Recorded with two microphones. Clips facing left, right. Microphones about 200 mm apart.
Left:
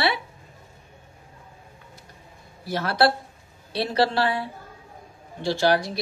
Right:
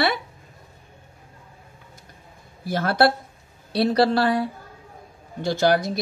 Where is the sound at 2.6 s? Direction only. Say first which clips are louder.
Right 2 dB; 50° right (ahead or behind).